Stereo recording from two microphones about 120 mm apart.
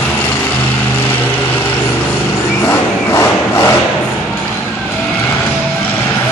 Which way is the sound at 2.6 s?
20° left (ahead or behind).